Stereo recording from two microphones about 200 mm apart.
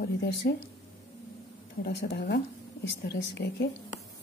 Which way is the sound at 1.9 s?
60° left (ahead or behind).